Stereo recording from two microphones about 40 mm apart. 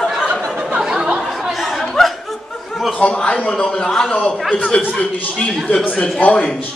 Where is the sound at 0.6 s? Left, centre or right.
Centre.